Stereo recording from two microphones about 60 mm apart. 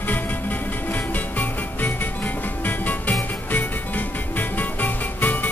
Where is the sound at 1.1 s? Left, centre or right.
Left.